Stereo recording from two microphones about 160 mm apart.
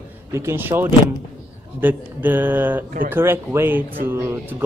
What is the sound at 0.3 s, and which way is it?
A man's voice, 15° right (ahead or behind).